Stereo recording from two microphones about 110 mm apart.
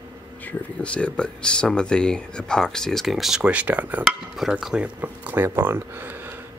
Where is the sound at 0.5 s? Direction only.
10° left (ahead or behind).